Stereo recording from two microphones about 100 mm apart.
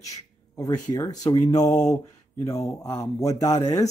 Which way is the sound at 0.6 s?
40° left (ahead or behind).